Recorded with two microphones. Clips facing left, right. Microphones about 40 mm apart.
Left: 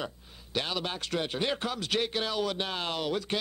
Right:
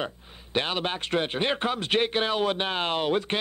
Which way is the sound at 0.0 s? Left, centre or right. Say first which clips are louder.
Right 5 dB; right.